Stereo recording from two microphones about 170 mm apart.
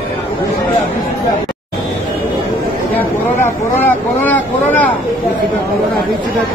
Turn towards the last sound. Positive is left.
turn(degrees=10)  # may be behind; listen again after turning